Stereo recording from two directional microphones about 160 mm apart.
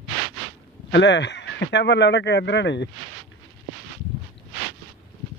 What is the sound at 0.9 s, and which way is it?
Speech, 90° left.